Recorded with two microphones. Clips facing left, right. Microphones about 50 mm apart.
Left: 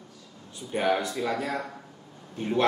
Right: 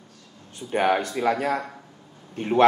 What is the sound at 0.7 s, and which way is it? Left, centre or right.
A man's voice, right.